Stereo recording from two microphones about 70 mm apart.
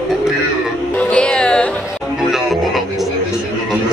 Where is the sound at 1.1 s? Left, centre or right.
Centre.